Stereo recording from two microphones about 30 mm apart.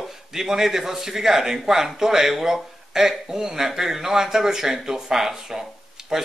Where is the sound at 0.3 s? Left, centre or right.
Centre.